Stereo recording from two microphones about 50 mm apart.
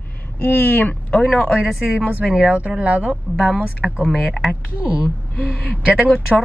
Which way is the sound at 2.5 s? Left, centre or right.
Right.